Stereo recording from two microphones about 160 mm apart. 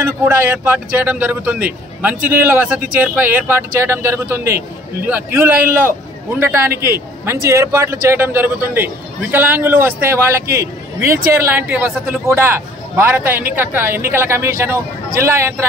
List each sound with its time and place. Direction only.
0.0 s a man's voice: 15° right (ahead or behind)
7.4 s a man's voice: 15° right (ahead or behind)